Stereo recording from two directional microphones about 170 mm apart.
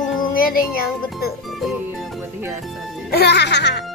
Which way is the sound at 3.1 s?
80° left.